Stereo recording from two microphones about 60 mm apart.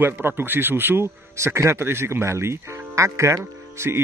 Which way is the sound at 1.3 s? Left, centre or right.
Right.